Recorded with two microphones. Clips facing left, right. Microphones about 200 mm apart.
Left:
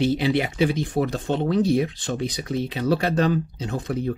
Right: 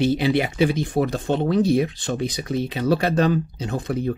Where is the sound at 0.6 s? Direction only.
5° right (ahead or behind).